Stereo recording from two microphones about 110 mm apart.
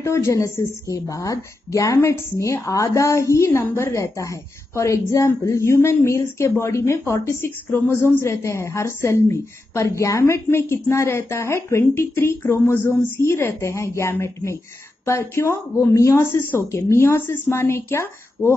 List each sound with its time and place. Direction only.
0.0 s a woman's voice: 25° left (ahead or behind)